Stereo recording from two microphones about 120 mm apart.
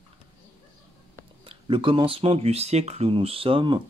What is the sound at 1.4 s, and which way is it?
Speech, 45° right (ahead or behind).